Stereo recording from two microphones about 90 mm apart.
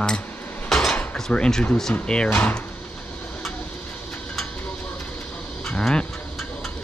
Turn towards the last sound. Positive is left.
turn(degrees=10)  # may be behind; listen again after turning